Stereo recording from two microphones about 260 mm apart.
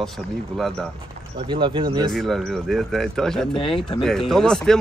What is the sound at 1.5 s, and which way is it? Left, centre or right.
Speech, centre.